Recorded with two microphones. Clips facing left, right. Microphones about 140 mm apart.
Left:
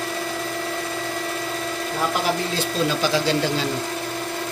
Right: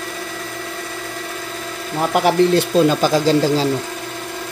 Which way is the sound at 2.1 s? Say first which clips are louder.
Right 9 dB; 65° right (ahead or behind).